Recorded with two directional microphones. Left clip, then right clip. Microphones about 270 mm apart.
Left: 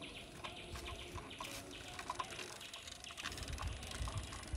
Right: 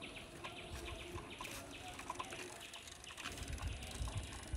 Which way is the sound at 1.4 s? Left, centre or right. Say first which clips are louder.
Left 1 dB; centre.